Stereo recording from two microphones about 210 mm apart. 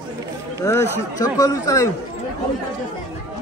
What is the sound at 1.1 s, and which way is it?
Speech, 15° left (ahead or behind).